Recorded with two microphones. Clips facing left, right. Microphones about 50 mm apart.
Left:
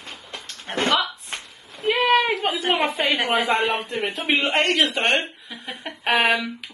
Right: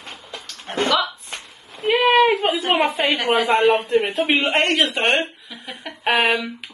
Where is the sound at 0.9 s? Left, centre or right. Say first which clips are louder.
Even; left.